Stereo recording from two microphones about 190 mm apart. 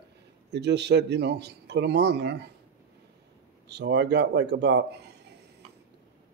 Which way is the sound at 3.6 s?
65° right (ahead or behind).